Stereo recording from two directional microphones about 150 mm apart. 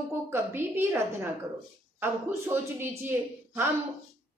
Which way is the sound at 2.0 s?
15° right (ahead or behind).